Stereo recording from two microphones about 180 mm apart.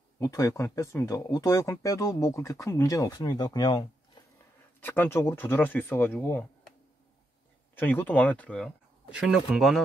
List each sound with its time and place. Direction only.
0.2 s speech: 15° left (ahead or behind)
7.8 s speech: 10° left (ahead or behind)